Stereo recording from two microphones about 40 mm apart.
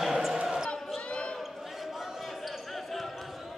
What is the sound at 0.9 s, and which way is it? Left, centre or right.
Basketball bounce, left.